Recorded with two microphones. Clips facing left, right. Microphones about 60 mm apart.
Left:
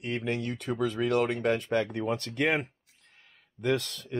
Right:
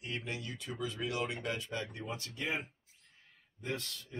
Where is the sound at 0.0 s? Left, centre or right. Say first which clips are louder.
Left 9 dB; left.